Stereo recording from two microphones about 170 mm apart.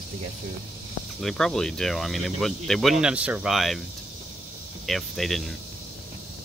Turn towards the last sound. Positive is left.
turn(degrees=0)  # may be behind; listen again after turning